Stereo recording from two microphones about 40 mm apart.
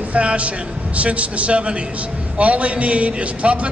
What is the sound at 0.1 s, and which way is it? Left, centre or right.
A man's voice, right.